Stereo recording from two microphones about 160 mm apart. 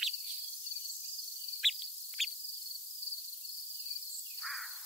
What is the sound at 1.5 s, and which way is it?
Cricket, centre (ahead or behind).